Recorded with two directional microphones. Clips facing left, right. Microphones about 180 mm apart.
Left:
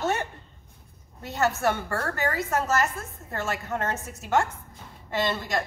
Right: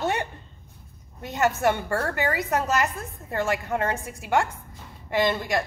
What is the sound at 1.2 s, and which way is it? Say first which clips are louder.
A woman's voice: right 2 dB; 15° right (ahead or behind).